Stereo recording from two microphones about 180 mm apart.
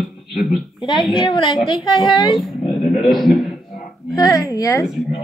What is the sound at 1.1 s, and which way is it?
A woman's voice, 25° left (ahead or behind).